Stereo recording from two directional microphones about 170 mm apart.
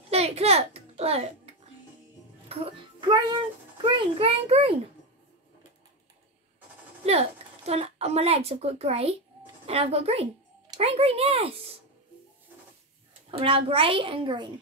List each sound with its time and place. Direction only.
0.1 s a sound: 40° right (ahead or behind)
2.4 s a child's voice: 35° right (ahead or behind)
7.1 s a woman's voice: 40° right (ahead or behind)
13.3 s a child's voice: 30° right (ahead or behind)